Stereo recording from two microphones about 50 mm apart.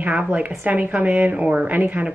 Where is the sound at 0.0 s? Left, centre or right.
Right.